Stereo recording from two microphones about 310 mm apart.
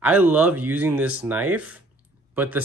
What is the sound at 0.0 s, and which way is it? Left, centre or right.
Speech, centre.